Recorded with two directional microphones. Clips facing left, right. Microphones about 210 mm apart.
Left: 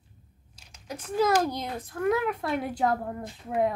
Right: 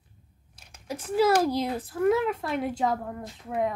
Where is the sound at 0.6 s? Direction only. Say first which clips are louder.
Right 2 dB; 55° right (ahead or behind).